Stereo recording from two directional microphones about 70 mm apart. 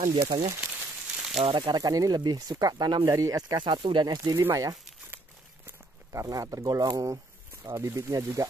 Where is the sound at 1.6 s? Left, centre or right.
Right.